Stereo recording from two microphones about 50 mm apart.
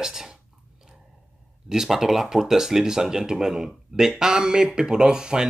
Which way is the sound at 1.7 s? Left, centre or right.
Centre.